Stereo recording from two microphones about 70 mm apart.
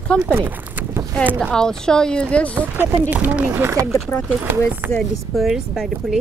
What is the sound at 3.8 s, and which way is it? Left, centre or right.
Speech, left.